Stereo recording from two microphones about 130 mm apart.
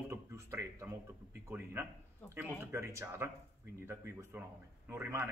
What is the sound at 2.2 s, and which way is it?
Speech, 10° left (ahead or behind).